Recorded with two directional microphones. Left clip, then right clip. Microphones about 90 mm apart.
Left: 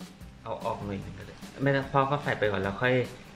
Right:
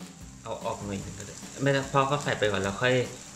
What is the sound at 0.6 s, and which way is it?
Speech, 20° right (ahead or behind).